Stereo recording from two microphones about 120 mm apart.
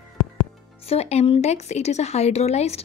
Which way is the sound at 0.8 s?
60° left (ahead or behind).